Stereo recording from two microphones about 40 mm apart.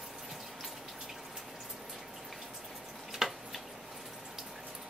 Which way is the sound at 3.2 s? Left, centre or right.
Centre.